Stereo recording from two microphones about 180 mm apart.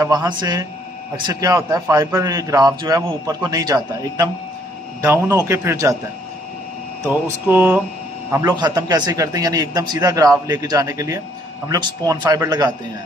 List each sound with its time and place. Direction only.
0.0 s a man's voice: 20° right (ahead or behind)
7.1 s a man's voice: 10° right (ahead or behind)